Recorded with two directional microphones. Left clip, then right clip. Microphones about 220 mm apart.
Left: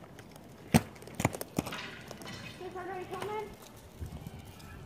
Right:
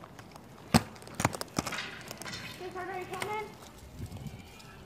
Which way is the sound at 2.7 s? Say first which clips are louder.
Right 2 dB; 35° right (ahead or behind).